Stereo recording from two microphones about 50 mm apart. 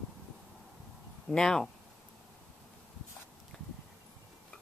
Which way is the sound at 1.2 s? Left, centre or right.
Centre.